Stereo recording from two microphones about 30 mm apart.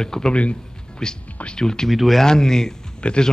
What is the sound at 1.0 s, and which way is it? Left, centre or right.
Speech, left.